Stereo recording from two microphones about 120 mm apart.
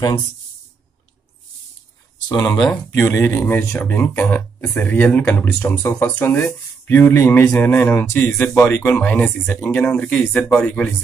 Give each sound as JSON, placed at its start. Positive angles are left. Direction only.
{"t": 2.2, "sound": "speech", "side_deg": 30}
{"t": 2.7, "sound": "speech", "side_deg": 20}